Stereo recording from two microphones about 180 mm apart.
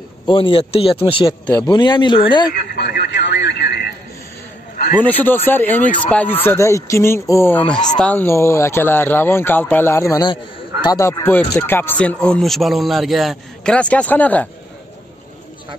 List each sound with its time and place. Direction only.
0.3 s a man's voice: 30° left (ahead or behind)
2.5 s speech: 60° left (ahead or behind)
5.0 s speech: 10° left (ahead or behind)